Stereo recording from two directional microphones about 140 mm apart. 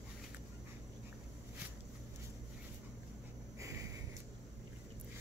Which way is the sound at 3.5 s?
25° right (ahead or behind).